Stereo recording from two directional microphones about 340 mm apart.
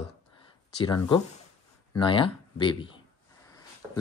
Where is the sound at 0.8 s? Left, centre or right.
Centre.